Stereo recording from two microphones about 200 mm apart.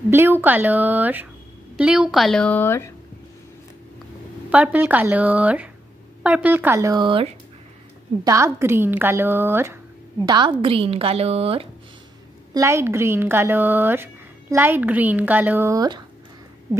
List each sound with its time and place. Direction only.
0.1 s a woman's voice: 10° right (ahead or behind); by 2.9 s 10° left (ahead or behind)
4.5 s a woman's voice: 5° right (ahead or behind); by 7.3 s 25° right (ahead or behind)
8.2 s a woman's voice: 15° right (ahead or behind)
10.2 s a woman's voice: 20° right (ahead or behind)
12.5 s a woman's voice: 15° right (ahead or behind)